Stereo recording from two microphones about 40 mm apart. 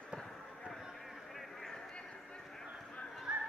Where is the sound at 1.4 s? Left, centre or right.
Centre.